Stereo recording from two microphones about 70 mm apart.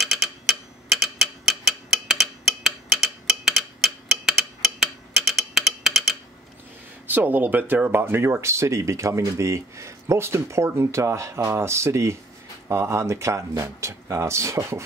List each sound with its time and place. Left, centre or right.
0.0 s tick-tock: centre
3.5 s a sound: centre
7.1 s speech: right